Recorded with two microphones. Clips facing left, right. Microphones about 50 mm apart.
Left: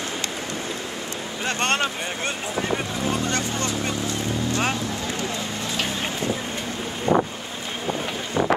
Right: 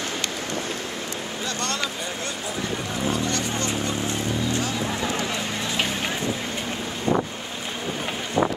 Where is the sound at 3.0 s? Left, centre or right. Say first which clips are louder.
Left 1 dB; left.